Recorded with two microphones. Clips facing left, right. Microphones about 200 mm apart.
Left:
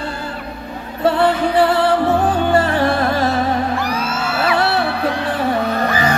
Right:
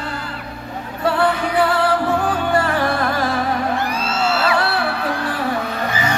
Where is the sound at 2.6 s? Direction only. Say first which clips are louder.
Left 3 dB; 25° left (ahead or behind).